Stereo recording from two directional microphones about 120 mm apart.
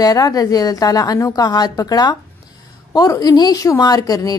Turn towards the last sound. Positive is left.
turn(degrees=30)  # may be behind; listen again after turning